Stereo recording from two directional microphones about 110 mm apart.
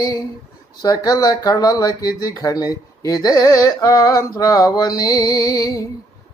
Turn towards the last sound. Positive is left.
turn(degrees=35)  # may be behind; listen again after turning